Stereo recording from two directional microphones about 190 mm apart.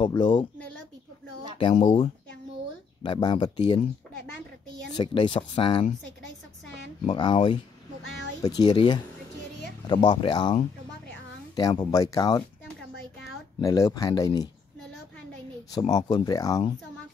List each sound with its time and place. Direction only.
0.0 s speech: 20° left (ahead or behind)
1.8 s speech: 40° left (ahead or behind)
3.0 s speech: 25° left (ahead or behind)
4.9 s speech: 25° left (ahead or behind)
7.1 s speech: 25° left (ahead or behind)
8.1 s a sound: 70° right (ahead or behind)
8.4 s speech: 20° left (ahead or behind)
13.6 s speech: 20° left (ahead or behind)
15.9 s speech: 20° left (ahead or behind)